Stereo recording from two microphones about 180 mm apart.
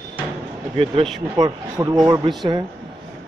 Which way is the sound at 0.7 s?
30° right (ahead or behind).